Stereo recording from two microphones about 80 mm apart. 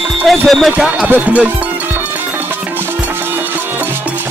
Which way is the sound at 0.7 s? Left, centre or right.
Centre.